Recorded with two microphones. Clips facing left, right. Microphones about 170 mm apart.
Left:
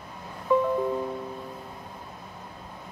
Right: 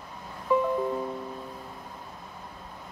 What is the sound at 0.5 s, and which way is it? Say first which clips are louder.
Music: left 2 dB; centre (ahead or behind).